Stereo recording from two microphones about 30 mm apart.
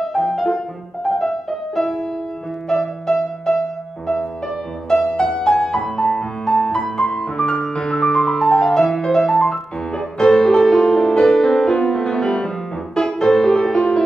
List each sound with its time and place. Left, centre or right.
0.0 s music: centre
2.7 s music: centre
4.9 s music: left